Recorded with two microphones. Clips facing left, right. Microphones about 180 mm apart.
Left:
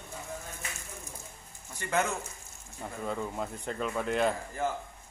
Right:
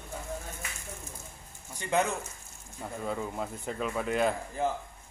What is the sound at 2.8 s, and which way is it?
Speech, centre (ahead or behind).